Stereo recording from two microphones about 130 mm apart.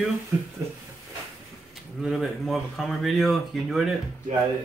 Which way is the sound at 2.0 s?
Centre (ahead or behind).